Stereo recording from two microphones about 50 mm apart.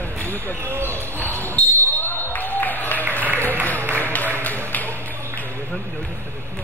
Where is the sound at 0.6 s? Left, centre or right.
Right.